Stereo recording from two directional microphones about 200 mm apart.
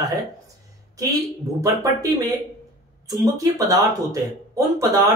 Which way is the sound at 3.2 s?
15° right (ahead or behind).